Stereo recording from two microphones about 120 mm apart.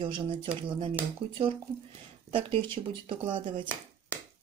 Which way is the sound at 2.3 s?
45° right (ahead or behind).